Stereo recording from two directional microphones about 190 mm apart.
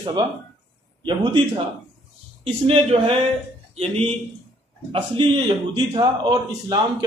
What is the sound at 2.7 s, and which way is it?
A man's voice, 30° right (ahead or behind).